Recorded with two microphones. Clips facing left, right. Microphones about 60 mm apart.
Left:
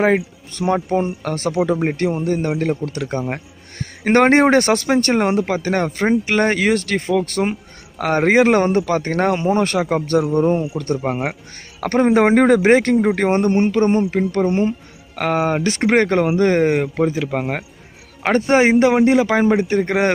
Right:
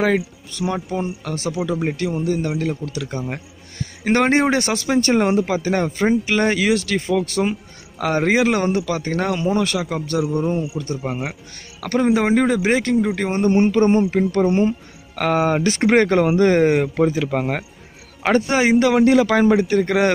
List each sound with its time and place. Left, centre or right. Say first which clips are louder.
0.0 s speech: left 2 dB; left
13.8 s speech: even; centre
15.1 s speech: even; left
15.9 s speech: even; left
17.3 s a man's voice: even; centre
18.2 s a man's voice: left 3 dB; left